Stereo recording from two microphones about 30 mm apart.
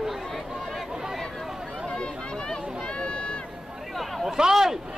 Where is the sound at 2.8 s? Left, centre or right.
Left.